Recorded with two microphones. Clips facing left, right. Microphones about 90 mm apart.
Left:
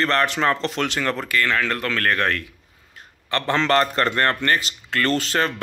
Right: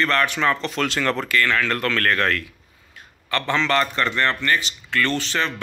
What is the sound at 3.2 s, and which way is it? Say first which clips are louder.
A man's voice: left 1 dB; 35° left (ahead or behind).